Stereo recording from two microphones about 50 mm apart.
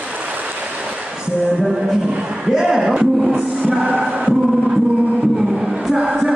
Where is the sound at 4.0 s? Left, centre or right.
Right.